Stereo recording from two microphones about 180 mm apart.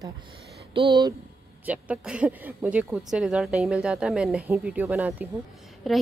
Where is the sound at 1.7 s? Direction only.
5° right (ahead or behind).